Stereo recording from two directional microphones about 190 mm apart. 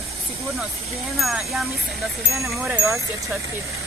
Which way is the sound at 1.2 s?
Centre (ahead or behind).